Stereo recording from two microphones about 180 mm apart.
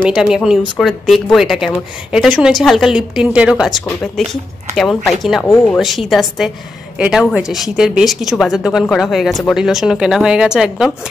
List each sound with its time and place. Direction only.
0.1 s speech: 5° right (ahead or behind)